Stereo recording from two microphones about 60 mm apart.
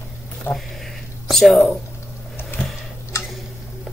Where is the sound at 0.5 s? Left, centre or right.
Left.